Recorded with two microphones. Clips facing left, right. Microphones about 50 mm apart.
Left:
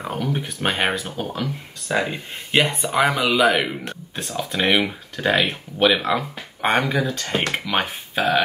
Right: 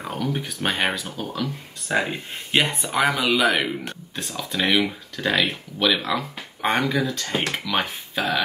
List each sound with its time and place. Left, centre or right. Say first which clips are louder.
0.0 s speech: left 2 dB; centre; by 1.5 s left
1.9 s speech: left 1 dB; centre
2.3 s a man's voice: left 2 dB; centre
3.5 s speech: left 1 dB; centre